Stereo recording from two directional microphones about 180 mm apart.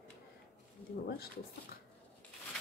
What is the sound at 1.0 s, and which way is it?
Speech, 60° left (ahead or behind).